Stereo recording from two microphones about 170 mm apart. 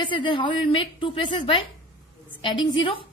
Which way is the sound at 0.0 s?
30° left (ahead or behind).